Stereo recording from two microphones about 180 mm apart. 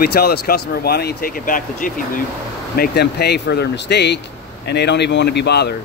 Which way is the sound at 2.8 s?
65° left (ahead or behind).